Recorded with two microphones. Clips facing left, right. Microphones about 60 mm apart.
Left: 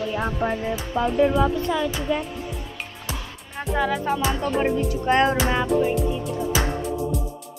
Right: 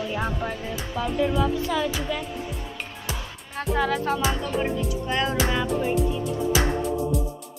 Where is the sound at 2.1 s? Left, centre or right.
Left.